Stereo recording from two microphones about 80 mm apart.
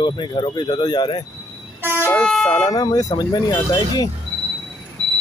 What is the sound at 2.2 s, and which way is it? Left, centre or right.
Vehicle, centre.